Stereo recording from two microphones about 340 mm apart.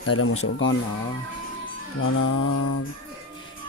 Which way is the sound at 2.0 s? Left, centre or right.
Left.